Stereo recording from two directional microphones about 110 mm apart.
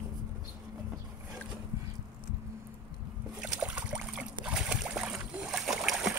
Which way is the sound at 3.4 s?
10° right (ahead or behind).